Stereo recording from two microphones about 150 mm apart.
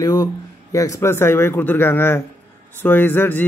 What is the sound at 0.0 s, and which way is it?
Speech, 25° left (ahead or behind).